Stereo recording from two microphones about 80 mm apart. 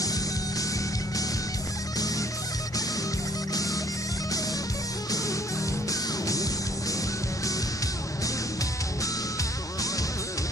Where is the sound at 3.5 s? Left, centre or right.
Left.